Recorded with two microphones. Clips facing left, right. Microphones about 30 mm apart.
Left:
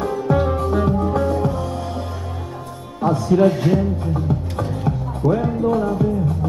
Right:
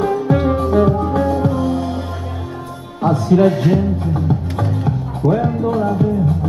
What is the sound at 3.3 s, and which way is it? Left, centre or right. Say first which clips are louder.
Music: right 2 dB; centre.